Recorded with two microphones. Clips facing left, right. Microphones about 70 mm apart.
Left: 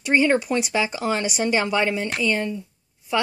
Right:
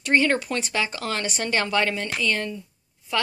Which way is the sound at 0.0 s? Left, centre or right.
Centre.